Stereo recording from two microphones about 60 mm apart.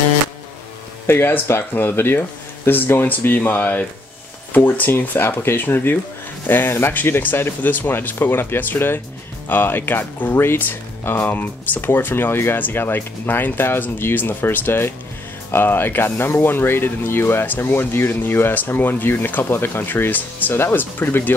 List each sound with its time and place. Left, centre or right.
1.0 s speech: left